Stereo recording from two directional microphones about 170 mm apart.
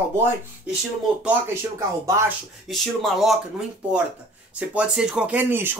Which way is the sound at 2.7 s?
Centre (ahead or behind).